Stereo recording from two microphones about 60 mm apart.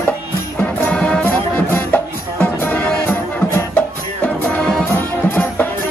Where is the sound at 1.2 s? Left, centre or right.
Left.